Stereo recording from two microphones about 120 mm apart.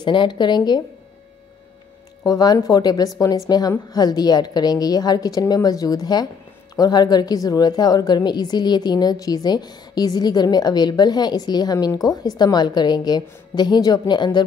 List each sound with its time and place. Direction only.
0.0 s a woman's voice: 40° left (ahead or behind)
2.2 s a woman's voice: 30° left (ahead or behind)